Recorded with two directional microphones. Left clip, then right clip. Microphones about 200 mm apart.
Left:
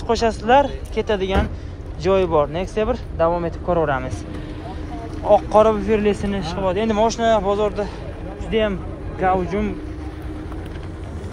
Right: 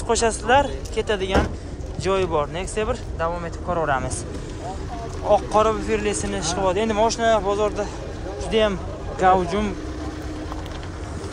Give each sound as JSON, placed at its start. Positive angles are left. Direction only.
{"t": 0.0, "sound": "speech", "side_deg": -15}
{"t": 5.2, "sound": "speech", "side_deg": -10}